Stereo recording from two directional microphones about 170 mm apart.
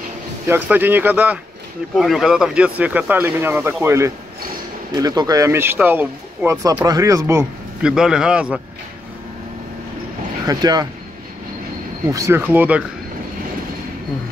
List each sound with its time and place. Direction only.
0.5 s speech: 10° right (ahead or behind)
7.8 s a man's voice: 5° right (ahead or behind)
10.4 s speech: 20° right (ahead or behind)
12.1 s speech: 15° right (ahead or behind)